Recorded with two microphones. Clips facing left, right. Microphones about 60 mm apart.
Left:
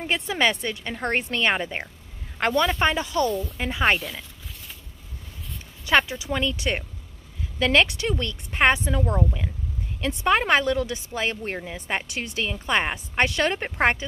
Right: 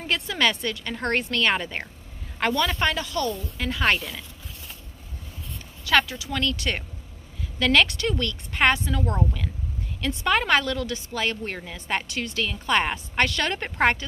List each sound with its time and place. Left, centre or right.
0.0 s a woman's voice: left
5.9 s a woman's voice: left